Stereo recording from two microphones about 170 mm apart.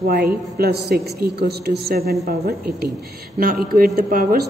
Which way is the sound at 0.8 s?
70° right (ahead or behind).